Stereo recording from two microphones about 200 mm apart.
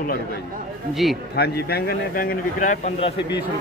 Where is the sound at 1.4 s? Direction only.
50° left (ahead or behind); by 3.1 s 35° left (ahead or behind).